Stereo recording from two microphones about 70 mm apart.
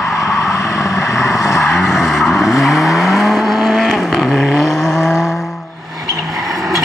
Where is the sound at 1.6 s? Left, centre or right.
Centre.